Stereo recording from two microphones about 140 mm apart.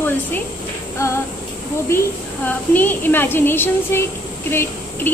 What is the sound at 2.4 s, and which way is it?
A woman's voice, 15° left (ahead or behind).